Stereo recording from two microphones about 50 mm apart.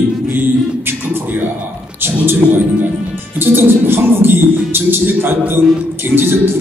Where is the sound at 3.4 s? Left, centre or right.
Right.